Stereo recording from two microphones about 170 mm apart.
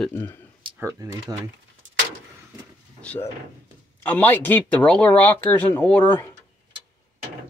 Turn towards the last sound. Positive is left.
turn(degrees=10)  # may be behind; listen again after turning